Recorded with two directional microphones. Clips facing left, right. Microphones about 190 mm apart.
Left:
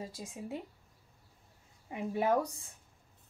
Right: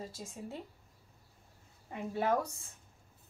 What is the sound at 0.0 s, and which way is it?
Speech, 15° left (ahead or behind).